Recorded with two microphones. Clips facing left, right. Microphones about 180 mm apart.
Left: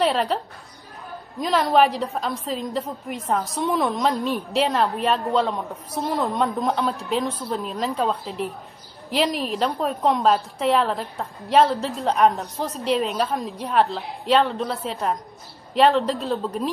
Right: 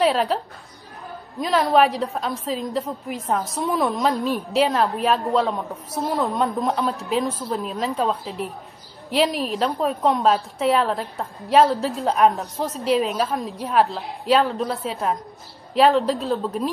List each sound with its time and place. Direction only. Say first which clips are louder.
0.0 s a woman's voice: right 2 dB; centre (ahead or behind)
1.4 s a woman's voice: right 1 dB; centre (ahead or behind)